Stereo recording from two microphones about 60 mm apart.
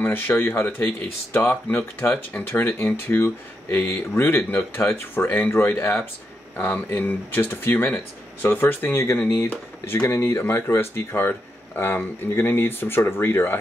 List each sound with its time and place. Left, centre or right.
0.0 s speech: left